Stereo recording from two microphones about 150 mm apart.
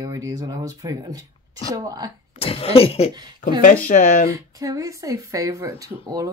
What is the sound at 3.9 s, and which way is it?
Speech, 75° left (ahead or behind).